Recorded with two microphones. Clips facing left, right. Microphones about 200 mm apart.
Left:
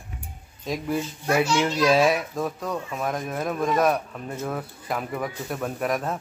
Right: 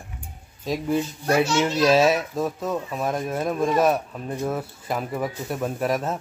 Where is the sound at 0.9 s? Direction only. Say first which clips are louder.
Right 2 dB; 25° right (ahead or behind).